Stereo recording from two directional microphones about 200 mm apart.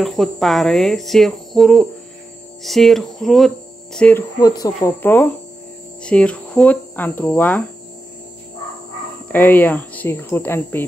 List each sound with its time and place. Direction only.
0.0 s speech: centre (ahead or behind)
4.4 s speech: 20° left (ahead or behind)
9.3 s speech: 10° left (ahead or behind)